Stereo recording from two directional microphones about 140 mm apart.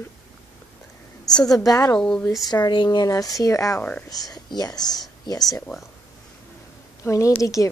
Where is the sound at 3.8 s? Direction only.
10° left (ahead or behind).